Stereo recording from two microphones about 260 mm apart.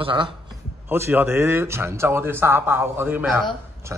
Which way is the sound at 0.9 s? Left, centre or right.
Centre.